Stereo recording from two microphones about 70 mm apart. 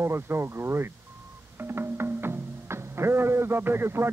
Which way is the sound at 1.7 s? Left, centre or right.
Right.